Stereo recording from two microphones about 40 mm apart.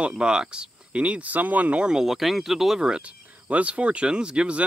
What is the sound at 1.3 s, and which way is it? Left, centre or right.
Speech, right.